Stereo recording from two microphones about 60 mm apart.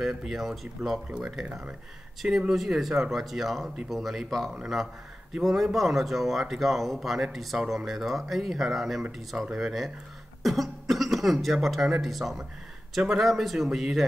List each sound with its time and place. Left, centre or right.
0.0 s speech: centre
2.5 s speech: centre